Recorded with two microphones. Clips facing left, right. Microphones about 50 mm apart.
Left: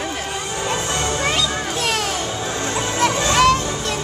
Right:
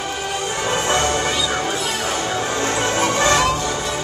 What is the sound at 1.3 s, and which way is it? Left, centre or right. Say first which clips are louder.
Music: right 1 dB; left.